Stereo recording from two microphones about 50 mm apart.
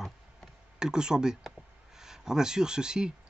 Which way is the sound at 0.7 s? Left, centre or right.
Centre.